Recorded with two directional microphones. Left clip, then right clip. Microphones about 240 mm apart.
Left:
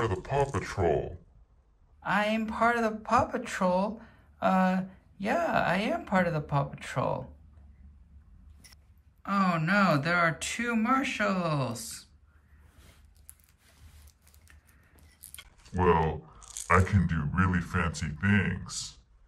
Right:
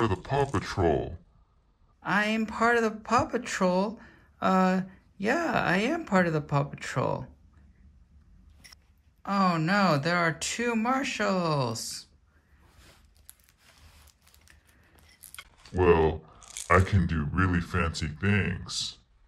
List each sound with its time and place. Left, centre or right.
0.0 s speech: right
9.2 s speech: centre
15.8 s speech: centre